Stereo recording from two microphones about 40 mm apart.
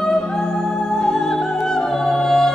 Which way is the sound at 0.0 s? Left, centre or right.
Centre.